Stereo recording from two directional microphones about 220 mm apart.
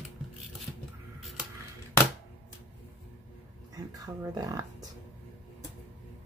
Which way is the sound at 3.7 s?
15° right (ahead or behind).